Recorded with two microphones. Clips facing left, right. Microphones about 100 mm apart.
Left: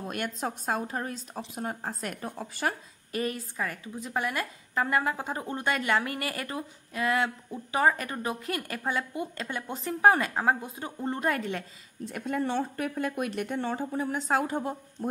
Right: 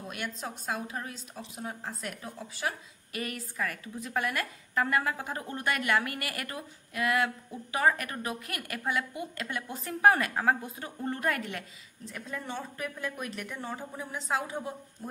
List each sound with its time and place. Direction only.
0.1 s a woman's voice: 50° left (ahead or behind)
3.1 s a woman's voice: 30° left (ahead or behind)
12.1 s a woman's voice: 65° left (ahead or behind)